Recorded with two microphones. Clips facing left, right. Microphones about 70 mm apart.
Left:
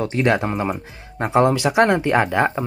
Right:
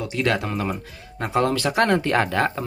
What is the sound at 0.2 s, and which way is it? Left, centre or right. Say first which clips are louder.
Speech: left 3 dB; left.